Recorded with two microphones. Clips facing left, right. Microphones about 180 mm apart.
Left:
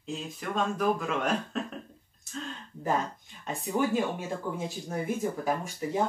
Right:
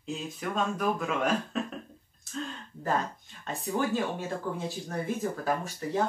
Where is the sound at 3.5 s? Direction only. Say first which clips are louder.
Left 1 dB; 15° left (ahead or behind).